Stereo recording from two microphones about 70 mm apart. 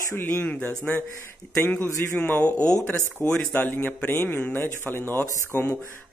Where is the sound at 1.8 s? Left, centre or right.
Left.